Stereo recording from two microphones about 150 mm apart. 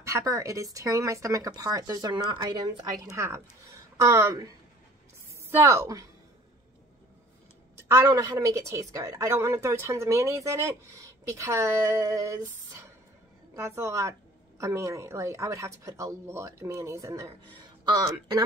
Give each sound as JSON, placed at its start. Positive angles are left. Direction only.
{"t": 0.0, "sound": "a woman's voice", "side_deg": -20}
{"t": 5.5, "sound": "a woman's voice", "side_deg": -15}
{"t": 7.7, "sound": "a woman's voice", "side_deg": -20}
{"t": 13.6, "sound": "a woman's voice", "side_deg": -20}